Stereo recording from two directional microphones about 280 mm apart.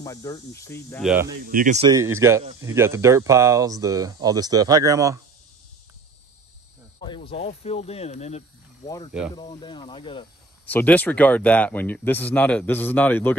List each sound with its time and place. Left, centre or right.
0.0 s speech: centre
1.2 s speech: right
1.9 s speech: centre
7.0 s speech: centre
8.8 s speech: centre
10.7 s speech: centre